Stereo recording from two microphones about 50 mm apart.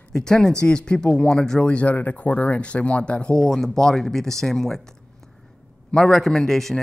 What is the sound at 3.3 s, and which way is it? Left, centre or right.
Speech, centre.